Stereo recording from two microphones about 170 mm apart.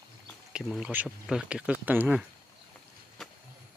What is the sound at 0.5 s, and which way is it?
Speech, 5° right (ahead or behind).